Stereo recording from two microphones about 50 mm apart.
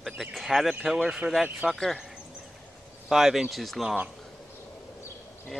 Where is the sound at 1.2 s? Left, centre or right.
Right.